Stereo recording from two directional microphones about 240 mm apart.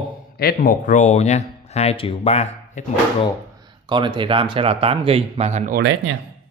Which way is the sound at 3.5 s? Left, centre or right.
Centre.